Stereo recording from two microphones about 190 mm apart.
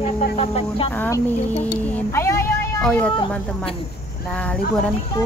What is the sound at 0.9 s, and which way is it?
Speech, 10° left (ahead or behind).